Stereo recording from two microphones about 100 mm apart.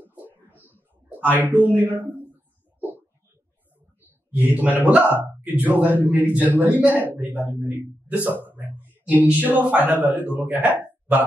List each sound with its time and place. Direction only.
0.0 s a sound: 20° right (ahead or behind)
1.4 s a man's voice: 15° right (ahead or behind)
4.3 s a man's voice: 15° right (ahead or behind)